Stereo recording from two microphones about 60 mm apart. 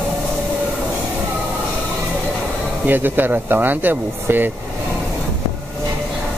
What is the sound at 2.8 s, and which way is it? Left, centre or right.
Speech, right.